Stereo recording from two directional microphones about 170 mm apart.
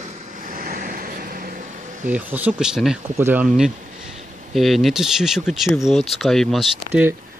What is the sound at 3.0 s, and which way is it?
Speech, 15° right (ahead or behind).